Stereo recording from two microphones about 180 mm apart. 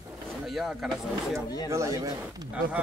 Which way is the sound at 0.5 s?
Centre (ahead or behind).